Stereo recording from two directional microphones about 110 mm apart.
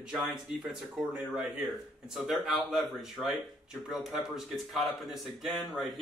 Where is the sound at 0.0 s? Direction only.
5° right (ahead or behind).